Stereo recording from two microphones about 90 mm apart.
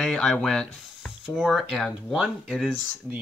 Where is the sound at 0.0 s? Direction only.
5° left (ahead or behind).